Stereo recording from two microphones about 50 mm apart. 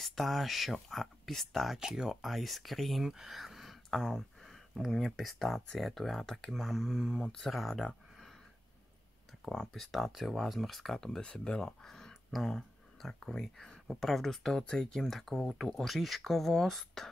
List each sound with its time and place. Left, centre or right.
0.0 s speech: centre
1.8 s speech: centre
3.0 s a sound: centre
4.8 s speech: centre
7.7 s a sound: centre
9.6 s speech: centre
11.1 s speech: centre
15.0 s speech: centre